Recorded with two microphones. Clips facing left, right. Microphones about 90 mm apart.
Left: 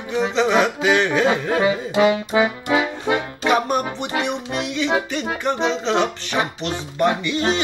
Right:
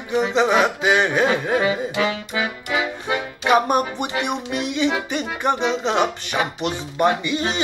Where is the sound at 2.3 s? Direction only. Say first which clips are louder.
Left 6 dB; 30° left (ahead or behind).